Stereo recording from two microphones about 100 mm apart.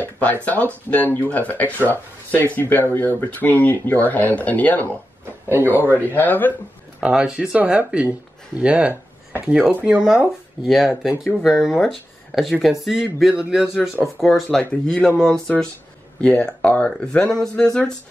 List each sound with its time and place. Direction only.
0.0 s speech: 15° left (ahead or behind)
6.1 s speech: 20° left (ahead or behind)
7.0 s speech: 10° right (ahead or behind)
14.6 s speech: 10° left (ahead or behind)